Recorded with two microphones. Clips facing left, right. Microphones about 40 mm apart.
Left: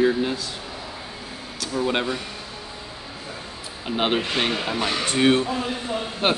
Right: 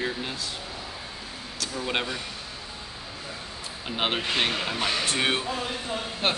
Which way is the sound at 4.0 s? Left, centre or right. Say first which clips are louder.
Left 3 dB; centre.